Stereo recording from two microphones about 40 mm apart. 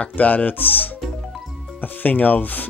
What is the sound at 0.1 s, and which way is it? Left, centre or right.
Speech, left.